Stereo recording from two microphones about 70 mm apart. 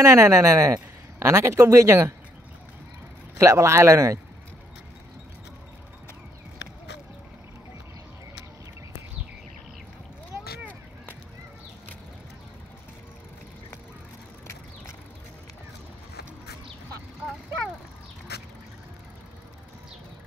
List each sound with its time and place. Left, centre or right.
0.0 s speech: right
3.3 s speech: right